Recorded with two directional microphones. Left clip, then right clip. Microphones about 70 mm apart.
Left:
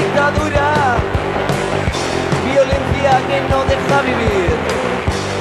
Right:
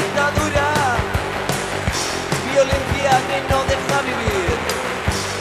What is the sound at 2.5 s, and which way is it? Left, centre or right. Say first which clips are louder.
Music: left 2 dB; left.